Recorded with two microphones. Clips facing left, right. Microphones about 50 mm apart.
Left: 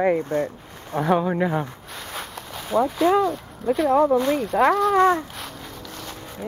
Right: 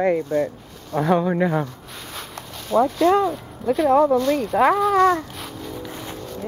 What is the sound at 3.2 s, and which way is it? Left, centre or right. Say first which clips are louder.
Speech: even; centre.